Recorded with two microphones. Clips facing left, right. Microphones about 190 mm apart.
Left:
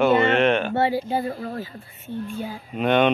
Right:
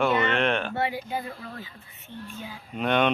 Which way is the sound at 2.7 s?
Centre (ahead or behind).